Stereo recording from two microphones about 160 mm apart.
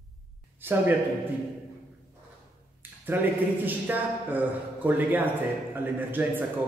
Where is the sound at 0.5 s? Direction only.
10° right (ahead or behind).